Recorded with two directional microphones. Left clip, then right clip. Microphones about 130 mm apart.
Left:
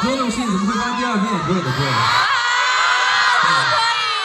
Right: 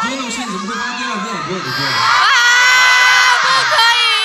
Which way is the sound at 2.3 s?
20° right (ahead or behind).